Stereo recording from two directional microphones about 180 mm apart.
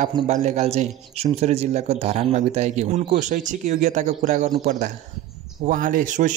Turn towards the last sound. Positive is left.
turn(degrees=-45)  # may be behind; listen again after turning